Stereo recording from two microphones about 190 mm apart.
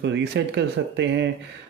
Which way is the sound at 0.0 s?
65° right (ahead or behind).